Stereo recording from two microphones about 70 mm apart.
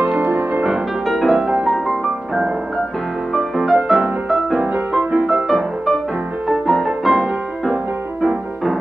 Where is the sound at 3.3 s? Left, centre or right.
Centre.